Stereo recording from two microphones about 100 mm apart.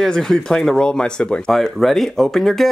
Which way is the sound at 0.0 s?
5° left (ahead or behind).